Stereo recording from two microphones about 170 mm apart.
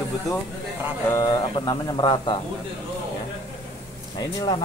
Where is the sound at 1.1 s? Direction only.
20° left (ahead or behind).